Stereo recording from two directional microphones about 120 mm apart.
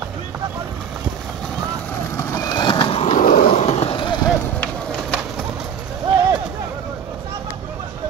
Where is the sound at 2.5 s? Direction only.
40° left (ahead or behind); by 3.9 s 60° left (ahead or behind).